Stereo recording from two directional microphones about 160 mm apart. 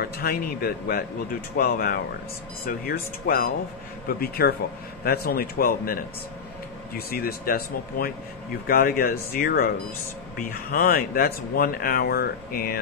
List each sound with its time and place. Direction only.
0.0 s speech: 70° left (ahead or behind)
7.0 s speech: 70° left (ahead or behind)